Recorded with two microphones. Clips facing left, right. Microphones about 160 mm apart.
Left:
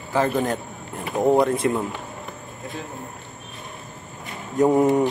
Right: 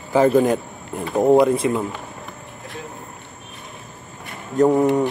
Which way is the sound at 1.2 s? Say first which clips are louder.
Right 3 dB; centre (ahead or behind).